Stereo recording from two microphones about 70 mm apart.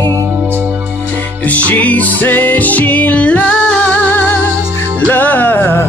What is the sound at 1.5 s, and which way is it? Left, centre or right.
Music, left.